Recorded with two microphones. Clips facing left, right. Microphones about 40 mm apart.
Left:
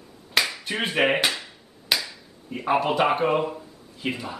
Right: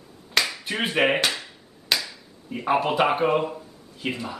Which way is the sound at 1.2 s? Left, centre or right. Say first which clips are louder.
Even; centre.